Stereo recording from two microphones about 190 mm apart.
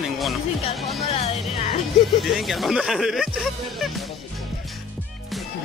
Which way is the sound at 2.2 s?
Centre (ahead or behind).